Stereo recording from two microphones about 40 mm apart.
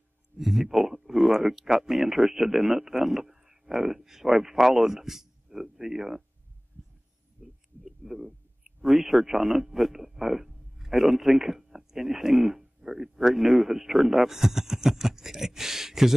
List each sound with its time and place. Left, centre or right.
0.4 s speech: centre
7.4 s a sound: right
7.8 s speech: centre